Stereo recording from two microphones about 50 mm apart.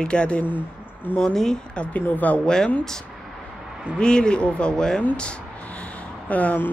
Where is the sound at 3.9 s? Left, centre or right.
Centre.